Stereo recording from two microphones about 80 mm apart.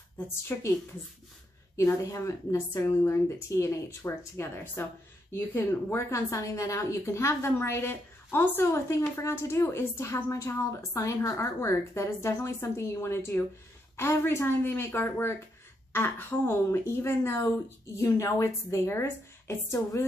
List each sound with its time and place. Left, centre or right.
0.3 s a woman's voice: left
1.8 s a woman's voice: left